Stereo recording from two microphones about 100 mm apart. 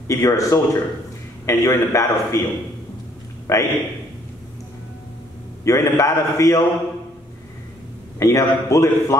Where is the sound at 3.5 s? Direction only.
30° left (ahead or behind).